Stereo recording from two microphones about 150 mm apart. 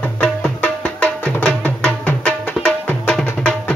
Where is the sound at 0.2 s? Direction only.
10° left (ahead or behind).